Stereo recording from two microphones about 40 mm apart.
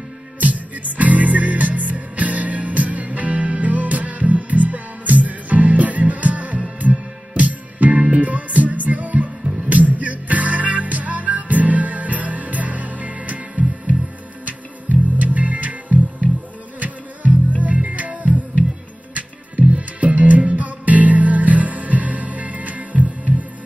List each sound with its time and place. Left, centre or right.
0.4 s music: right
15.1 s music: right
17.6 s music: right